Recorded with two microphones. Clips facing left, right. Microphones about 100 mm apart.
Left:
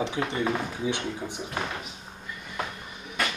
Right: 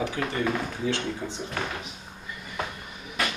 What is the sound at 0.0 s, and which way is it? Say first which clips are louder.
Speech: even; 25° left (ahead or behind).